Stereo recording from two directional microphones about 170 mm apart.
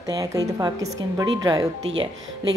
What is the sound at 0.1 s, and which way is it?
A woman's voice, 20° right (ahead or behind).